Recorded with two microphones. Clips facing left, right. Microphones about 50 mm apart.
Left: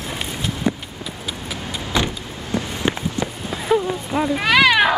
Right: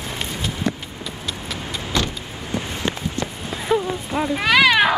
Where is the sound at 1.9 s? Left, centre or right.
Centre.